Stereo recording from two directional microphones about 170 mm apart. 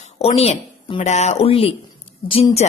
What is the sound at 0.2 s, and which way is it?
A woman's voice, 35° left (ahead or behind).